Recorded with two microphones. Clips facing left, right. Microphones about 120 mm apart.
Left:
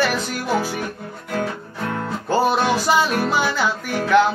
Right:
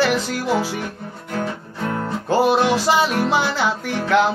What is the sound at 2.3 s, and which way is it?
Music, 25° right (ahead or behind).